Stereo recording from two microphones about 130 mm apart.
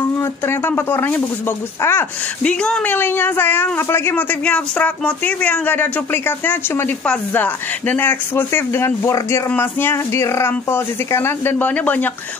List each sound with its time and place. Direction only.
0.0 s speech: 20° left (ahead or behind)
2.4 s speech: 5° left (ahead or behind)